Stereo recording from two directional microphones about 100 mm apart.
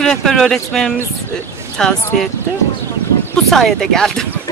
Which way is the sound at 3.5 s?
Centre (ahead or behind).